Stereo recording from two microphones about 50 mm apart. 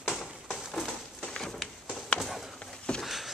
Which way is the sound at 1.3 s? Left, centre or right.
Centre.